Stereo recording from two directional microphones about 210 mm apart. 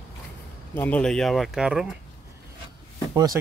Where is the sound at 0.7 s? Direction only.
10° left (ahead or behind).